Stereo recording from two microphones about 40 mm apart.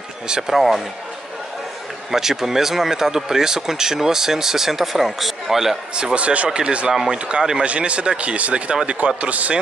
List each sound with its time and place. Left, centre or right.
0.3 s speech: centre
2.0 s speech: centre
6.1 s speech: right
6.9 s speech: centre
7.6 s speech: right